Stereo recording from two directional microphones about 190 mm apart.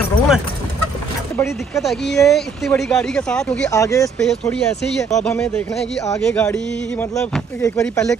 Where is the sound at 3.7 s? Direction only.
15° left (ahead or behind).